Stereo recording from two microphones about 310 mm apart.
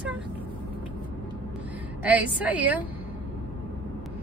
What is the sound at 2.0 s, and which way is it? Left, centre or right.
Speech, centre.